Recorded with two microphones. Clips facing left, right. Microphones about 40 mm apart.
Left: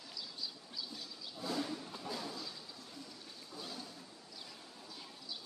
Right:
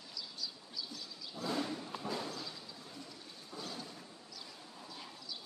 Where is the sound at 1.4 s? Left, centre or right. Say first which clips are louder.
Right 2 dB; right.